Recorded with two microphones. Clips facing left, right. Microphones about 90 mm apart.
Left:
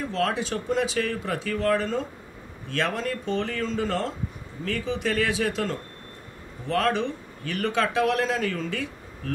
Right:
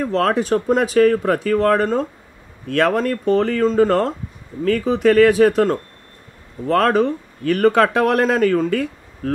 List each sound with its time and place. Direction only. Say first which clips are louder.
0.0 s speech: right 8 dB; 50° right (ahead or behind)